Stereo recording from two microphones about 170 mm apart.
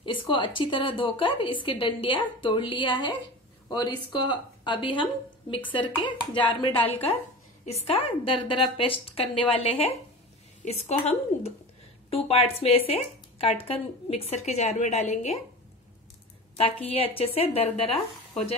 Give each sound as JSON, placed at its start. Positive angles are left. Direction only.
{"t": 0.0, "sound": "a woman's voice", "side_deg": 30}
{"t": 16.5, "sound": "speech", "side_deg": 35}